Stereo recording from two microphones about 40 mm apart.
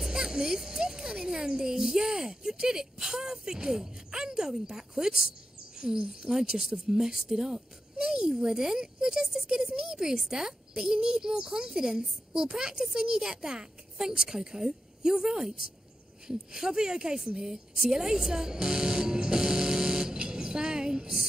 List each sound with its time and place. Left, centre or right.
0.0 s a child's voice: centre
17.8 s music: centre